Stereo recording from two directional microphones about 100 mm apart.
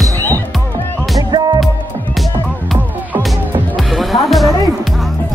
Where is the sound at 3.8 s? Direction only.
Centre (ahead or behind).